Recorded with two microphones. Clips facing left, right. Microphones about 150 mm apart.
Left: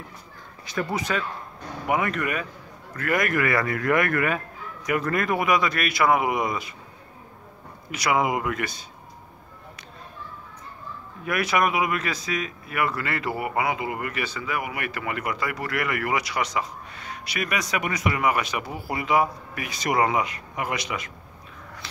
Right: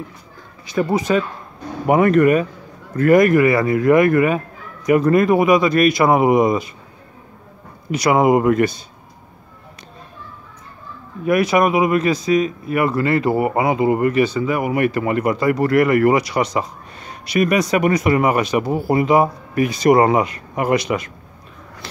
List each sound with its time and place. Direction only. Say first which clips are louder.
1.1 s speech: right 11 dB; 25° right (ahead or behind)
1.9 s speech: right 12 dB; 45° right (ahead or behind)
2.9 s speech: right 13 dB; 35° right (ahead or behind)
7.9 s speech: right 9 dB; 40° right (ahead or behind)
11.2 s speech: right 8 dB; 30° right (ahead or behind)